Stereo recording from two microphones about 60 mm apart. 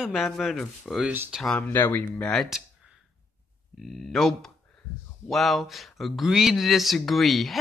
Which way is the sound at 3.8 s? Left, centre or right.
Centre.